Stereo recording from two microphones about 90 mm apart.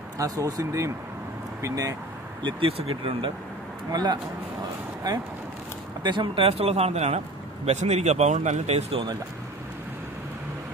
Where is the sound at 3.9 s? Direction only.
55° right (ahead or behind).